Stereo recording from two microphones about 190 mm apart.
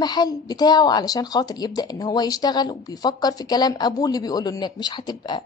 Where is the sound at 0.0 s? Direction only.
20° left (ahead or behind).